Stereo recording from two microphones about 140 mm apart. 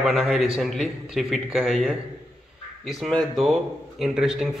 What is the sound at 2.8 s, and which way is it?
A man's voice, centre (ahead or behind).